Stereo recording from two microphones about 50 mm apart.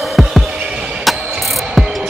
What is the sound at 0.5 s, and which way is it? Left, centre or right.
Music, centre.